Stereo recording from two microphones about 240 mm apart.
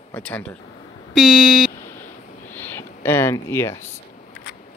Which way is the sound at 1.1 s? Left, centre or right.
Centre.